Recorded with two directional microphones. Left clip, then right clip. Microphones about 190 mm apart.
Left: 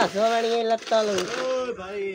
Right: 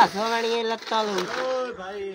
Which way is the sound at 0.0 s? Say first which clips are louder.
Right 1 dB; 40° right (ahead or behind).